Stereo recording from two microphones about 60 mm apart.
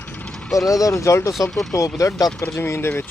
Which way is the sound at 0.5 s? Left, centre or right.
Left.